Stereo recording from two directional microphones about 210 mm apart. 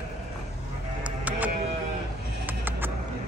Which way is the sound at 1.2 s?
10° right (ahead or behind).